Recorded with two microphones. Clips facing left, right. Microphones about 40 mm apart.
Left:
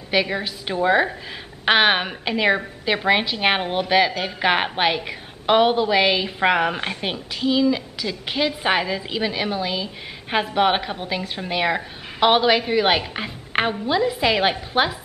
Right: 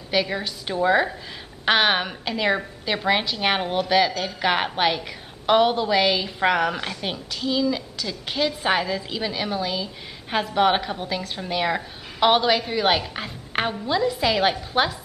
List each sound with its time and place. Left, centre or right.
0.1 s a woman's voice: centre
7.1 s a woman's voice: centre